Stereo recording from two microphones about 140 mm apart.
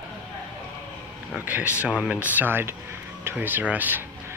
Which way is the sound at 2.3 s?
15° right (ahead or behind).